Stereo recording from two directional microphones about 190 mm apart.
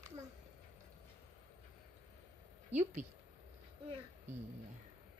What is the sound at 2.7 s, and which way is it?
Speech, 35° right (ahead or behind).